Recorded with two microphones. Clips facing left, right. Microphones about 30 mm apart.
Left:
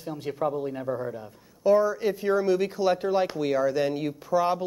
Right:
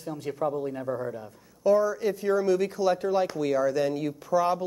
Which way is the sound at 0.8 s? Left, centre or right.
Centre.